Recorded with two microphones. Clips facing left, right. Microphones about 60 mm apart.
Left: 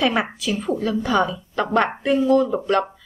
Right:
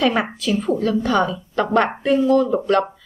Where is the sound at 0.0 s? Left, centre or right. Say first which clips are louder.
Right 2 dB; centre.